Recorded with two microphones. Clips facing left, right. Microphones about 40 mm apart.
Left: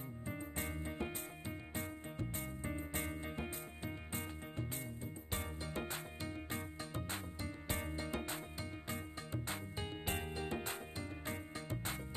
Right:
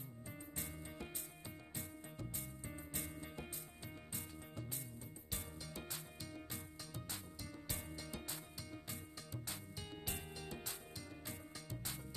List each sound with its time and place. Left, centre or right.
0.3 s music: left